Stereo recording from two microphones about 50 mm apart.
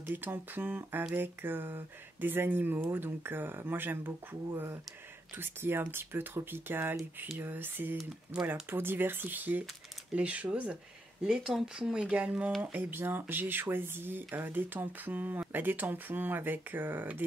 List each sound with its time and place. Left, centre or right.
0.0 s speech: right
5.4 s speech: right
10.1 s speech: right
11.2 s speech: centre; by 12.5 s right
12.7 s speech: right